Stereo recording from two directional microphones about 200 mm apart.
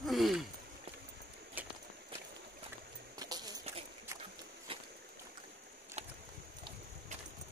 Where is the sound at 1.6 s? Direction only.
10° right (ahead or behind).